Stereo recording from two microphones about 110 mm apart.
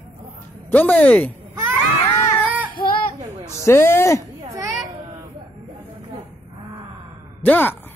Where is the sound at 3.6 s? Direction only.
25° left (ahead or behind).